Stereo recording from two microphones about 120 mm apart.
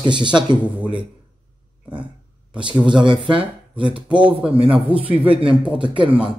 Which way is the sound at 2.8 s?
40° right (ahead or behind).